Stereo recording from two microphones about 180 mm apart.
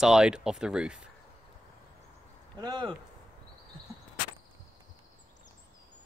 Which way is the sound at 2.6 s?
25° right (ahead or behind).